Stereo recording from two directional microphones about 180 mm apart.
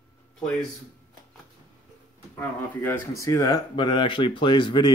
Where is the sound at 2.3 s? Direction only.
10° left (ahead or behind).